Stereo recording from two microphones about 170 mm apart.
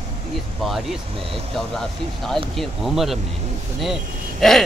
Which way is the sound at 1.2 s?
35° right (ahead or behind).